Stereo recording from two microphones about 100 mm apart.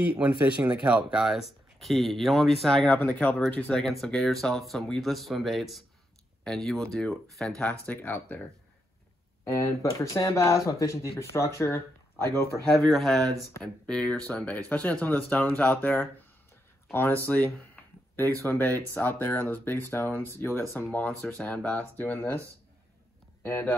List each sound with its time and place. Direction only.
0.1 s speech: 15° right (ahead or behind); by 2.9 s centre (ahead or behind)
2.9 s speech: 15° left (ahead or behind)
3.8 s speech: centre (ahead or behind)
7.8 s speech: 15° left (ahead or behind)
9.5 s speech: 30° left (ahead or behind)
12.9 s speech: 5° left (ahead or behind)
23.4 s speech: 20° left (ahead or behind)